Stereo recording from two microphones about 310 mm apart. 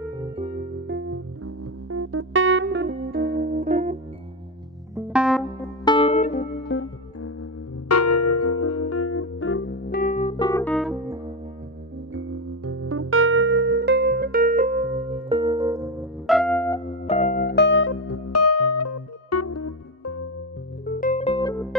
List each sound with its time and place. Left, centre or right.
0.8 s music: right
4.9 s music: centre
5.9 s music: centre
6.8 s music: left; by 11.0 s centre
12.1 s music: right; by 16.8 s centre
17.0 s music: left
20.8 s music: left